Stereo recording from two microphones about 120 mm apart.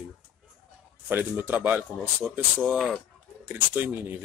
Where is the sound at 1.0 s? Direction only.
15° right (ahead or behind).